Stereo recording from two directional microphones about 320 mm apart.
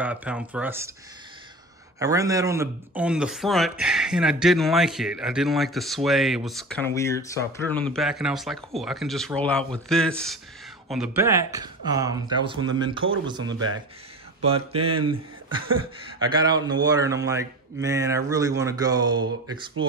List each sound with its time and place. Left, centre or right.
0.0 s speech: centre
2.0 s speech: centre
14.4 s speech: centre